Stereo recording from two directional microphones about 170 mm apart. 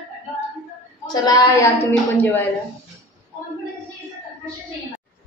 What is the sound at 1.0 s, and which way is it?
Speech, 25° left (ahead or behind).